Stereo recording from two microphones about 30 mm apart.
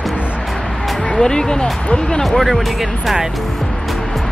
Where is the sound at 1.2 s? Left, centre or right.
Left.